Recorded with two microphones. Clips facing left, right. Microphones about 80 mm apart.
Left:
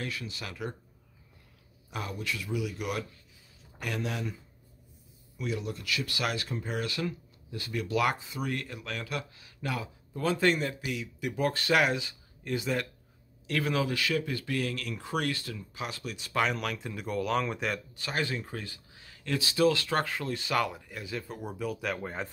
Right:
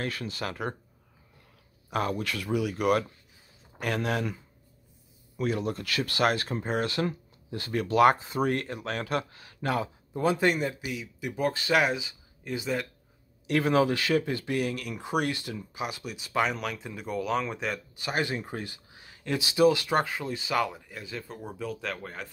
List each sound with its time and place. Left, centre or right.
0.0 s speech: right
1.9 s speech: right
5.4 s speech: right
10.1 s speech: centre
13.5 s speech: right; by 17.7 s centre
17.9 s speech: centre